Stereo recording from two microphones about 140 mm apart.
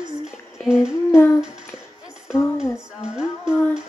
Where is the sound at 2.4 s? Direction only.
20° left (ahead or behind).